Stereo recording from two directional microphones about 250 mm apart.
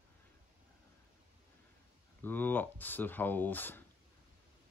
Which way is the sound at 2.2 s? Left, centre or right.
Centre.